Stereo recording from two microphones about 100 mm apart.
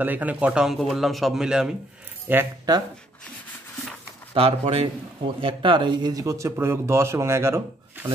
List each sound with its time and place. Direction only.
0.0 s speech: 15° right (ahead or behind)
0.7 s speech: centre (ahead or behind)
2.3 s speech: 20° right (ahead or behind)
4.3 s speech: 80° right
5.4 s speech: 60° right (ahead or behind); by 8.1 s 25° right (ahead or behind)